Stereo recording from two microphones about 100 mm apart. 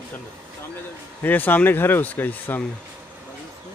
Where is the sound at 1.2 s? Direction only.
20° left (ahead or behind).